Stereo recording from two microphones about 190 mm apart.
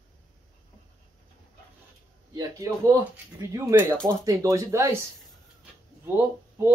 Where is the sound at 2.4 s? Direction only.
15° right (ahead or behind).